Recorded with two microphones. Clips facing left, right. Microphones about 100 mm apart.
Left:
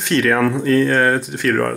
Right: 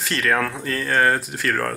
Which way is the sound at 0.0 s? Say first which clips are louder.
Left 6 dB; centre (ahead or behind).